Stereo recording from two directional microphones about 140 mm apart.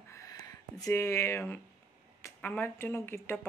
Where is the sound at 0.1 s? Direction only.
25° left (ahead or behind).